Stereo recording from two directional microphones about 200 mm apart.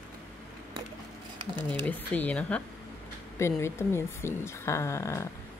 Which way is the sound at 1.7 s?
10° left (ahead or behind).